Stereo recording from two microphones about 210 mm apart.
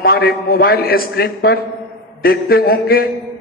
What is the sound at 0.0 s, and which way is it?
A man's voice, 45° left (ahead or behind).